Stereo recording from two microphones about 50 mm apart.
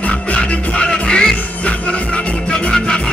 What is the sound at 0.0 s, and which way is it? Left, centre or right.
Music, left.